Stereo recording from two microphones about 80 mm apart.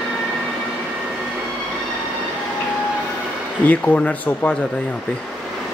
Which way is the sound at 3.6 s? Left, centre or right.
Left.